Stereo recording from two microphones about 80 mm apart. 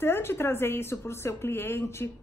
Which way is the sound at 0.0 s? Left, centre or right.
Left.